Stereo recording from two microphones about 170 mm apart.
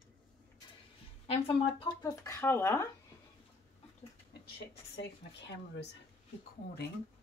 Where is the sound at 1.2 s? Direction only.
35° left (ahead or behind); by 2.9 s 15° left (ahead or behind).